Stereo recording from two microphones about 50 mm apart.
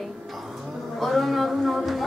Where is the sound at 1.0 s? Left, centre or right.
Centre.